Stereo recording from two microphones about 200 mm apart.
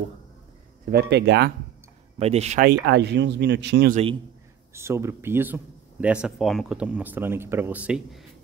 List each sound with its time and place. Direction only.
0.8 s speech: 55° right (ahead or behind)
2.1 s speech: 30° right (ahead or behind)
2.9 s speech: 55° right (ahead or behind)
3.9 s a man's voice: 30° right (ahead or behind)
4.7 s speech: 15° right (ahead or behind)